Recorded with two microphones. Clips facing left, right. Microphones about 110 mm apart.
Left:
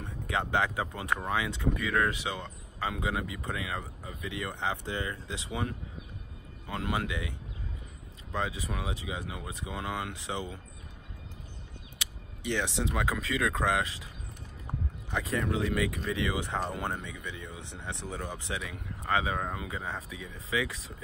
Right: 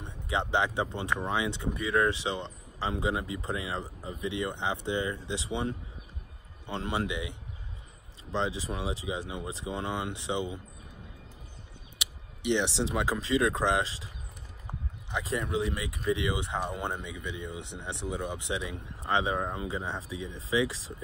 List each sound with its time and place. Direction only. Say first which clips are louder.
0.0 s speech: right 1 dB; 25° right (ahead or behind)
12.0 s speech: right 3 dB; 20° right (ahead or behind)
15.0 s speech: left 1 dB; 20° right (ahead or behind)